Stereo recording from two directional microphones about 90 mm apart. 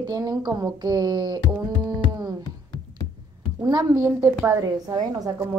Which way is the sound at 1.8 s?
45° right (ahead or behind).